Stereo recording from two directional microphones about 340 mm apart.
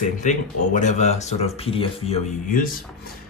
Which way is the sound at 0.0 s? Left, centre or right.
Left.